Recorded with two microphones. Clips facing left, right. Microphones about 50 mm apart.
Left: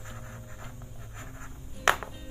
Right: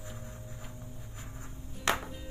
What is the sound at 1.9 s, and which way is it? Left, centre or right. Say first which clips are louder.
Music: left 5 dB; left.